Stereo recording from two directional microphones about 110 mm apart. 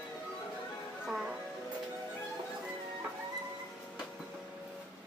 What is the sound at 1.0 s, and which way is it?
Music, 5° right (ahead or behind).